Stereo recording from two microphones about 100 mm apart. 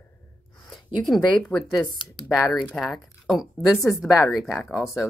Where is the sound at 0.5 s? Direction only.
Centre (ahead or behind).